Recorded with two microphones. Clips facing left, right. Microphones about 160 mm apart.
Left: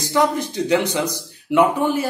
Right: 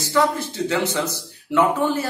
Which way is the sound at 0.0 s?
15° left (ahead or behind).